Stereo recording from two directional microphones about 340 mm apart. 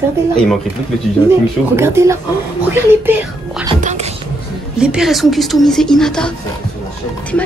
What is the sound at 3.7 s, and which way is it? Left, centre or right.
Music, centre.